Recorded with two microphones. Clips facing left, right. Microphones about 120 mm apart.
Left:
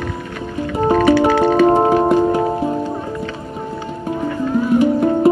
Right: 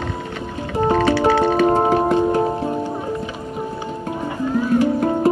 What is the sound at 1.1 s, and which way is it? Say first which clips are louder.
Music: left 2 dB; 25° right (ahead or behind).